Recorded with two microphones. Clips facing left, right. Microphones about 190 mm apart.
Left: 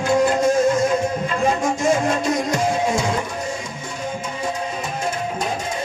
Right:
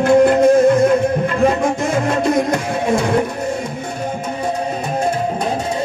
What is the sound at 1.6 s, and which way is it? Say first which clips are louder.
Music: right 1 dB; 60° right (ahead or behind).